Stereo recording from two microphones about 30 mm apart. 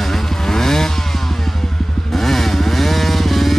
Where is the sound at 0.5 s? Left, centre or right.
Centre.